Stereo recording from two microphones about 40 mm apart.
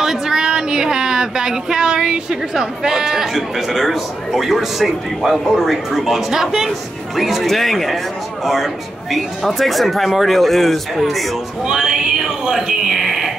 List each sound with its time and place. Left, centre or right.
0.0 s speech: centre
9.1 s speech: centre
11.6 s music: centre
12.6 s a sound: centre